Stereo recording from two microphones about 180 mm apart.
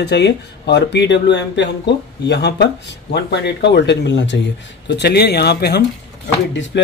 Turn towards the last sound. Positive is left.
turn(degrees=75)  # may be behind; listen again after turning